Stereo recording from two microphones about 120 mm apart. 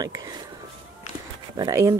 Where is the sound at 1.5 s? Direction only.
30° right (ahead or behind).